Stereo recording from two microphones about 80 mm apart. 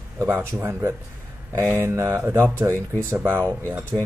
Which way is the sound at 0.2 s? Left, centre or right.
Right.